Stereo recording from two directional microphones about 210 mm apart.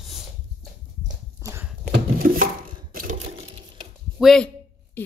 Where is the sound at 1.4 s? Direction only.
15° right (ahead or behind).